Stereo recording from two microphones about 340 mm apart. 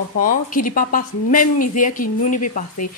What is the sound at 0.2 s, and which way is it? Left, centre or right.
A woman's voice, left.